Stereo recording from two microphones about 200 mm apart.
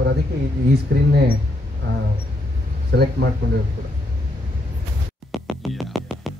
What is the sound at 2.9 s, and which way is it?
Speech, 55° right (ahead or behind).